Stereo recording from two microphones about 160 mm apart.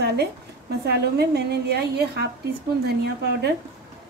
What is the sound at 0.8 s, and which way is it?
A woman's voice, 90° right.